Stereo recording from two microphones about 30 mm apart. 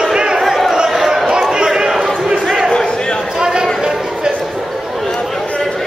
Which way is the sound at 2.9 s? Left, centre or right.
Left.